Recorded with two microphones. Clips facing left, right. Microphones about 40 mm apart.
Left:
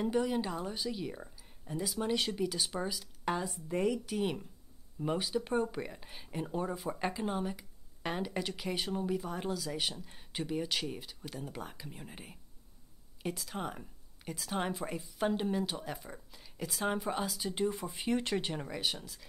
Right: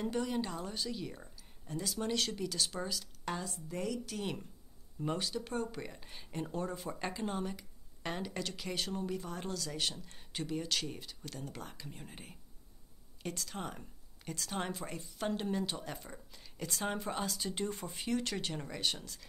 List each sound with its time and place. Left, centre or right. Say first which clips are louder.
0.0 s speech: left 4 dB; centre
18.0 s speech: left 3 dB; left; by 19.2 s centre